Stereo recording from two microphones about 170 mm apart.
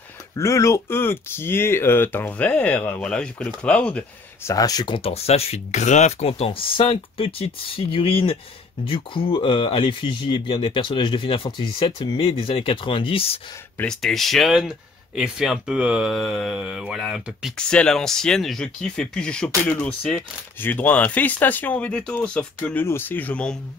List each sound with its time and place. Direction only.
0.4 s speech: 15° left (ahead or behind)
4.5 s speech: 20° left (ahead or behind)
13.7 s speech: centre (ahead or behind)